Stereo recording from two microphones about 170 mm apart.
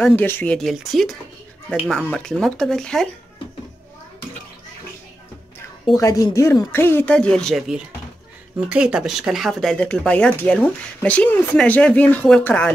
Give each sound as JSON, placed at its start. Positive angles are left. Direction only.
{"t": 0.0, "sound": "speech", "side_deg": 10}
{"t": 5.9, "sound": "speech", "side_deg": 20}